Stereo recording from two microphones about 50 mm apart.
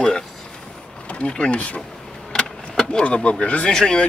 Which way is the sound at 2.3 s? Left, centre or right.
Centre.